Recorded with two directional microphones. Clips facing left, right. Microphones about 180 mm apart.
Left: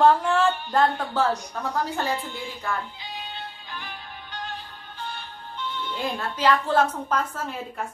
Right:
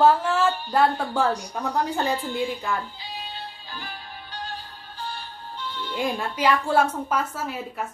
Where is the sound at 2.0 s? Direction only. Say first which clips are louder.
Right 3 dB; 35° right (ahead or behind).